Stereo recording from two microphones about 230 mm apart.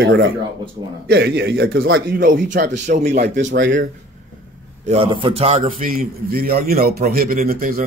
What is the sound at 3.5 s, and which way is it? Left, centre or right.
Speech, right.